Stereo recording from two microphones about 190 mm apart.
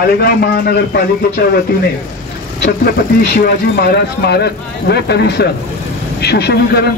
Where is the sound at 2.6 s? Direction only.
50° left (ahead or behind).